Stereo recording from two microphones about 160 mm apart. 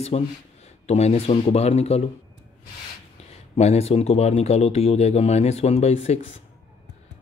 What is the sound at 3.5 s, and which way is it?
Speech, 40° left (ahead or behind).